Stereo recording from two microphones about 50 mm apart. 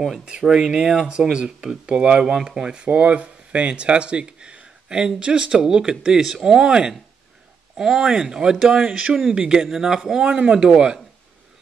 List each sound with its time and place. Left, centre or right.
0.2 s speech: centre